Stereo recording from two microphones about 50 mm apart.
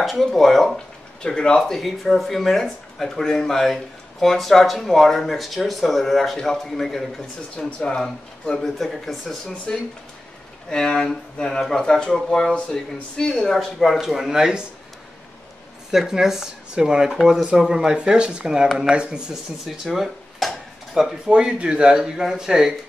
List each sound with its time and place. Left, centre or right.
0.0 s speech: centre
0.7 s a sound: centre
1.6 s speech: centre
7.5 s speech: centre
8.7 s speech: centre
10.7 s speech: centre
13.4 s speech: centre
15.9 s speech: centre
19.8 s dishes: centre
21.3 s a man's voice: centre